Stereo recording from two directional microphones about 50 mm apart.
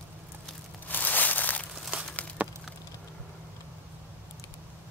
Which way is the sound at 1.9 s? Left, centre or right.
Right.